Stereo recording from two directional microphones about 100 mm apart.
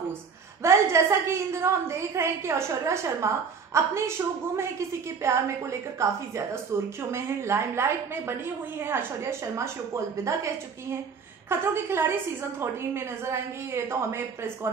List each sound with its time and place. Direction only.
0.6 s a woman's voice: 30° right (ahead or behind)
5.2 s a woman's voice: 30° right (ahead or behind)